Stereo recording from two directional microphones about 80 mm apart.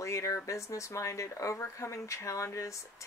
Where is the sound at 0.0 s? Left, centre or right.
Left.